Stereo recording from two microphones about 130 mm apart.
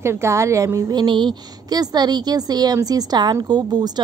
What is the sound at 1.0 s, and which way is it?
A woman's voice, 35° right (ahead or behind).